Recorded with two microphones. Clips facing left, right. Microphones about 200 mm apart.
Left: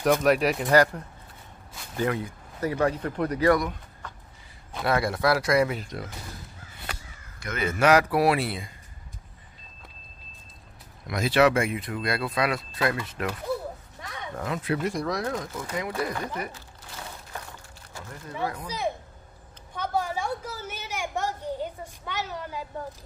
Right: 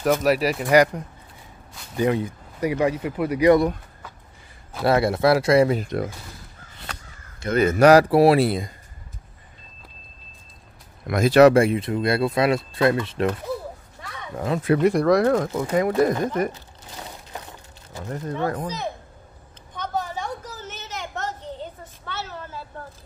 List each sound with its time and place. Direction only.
0.0 s speech: centre (ahead or behind)
2.0 s speech: 20° right (ahead or behind)
2.7 s speech: 10° right (ahead or behind)
4.0 s a sound: 5° right (ahead or behind)
4.8 s speech: 25° right (ahead or behind)
5.8 s speech: 55° right (ahead or behind)
7.5 s speech: 40° right (ahead or behind)
11.1 s speech: 50° right (ahead or behind); by 14.6 s 25° right (ahead or behind)
14.6 s speech: 60° right (ahead or behind)
16.9 s a sound: 20° right (ahead or behind)
18.3 s speech: 45° right (ahead or behind)
19.7 s a sound: 10° left (ahead or behind)